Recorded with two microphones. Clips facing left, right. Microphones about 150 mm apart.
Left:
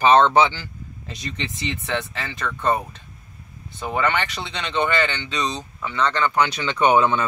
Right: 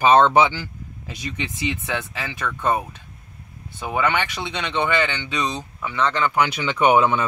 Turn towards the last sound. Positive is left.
turn(degrees=-15)  # may be behind; listen again after turning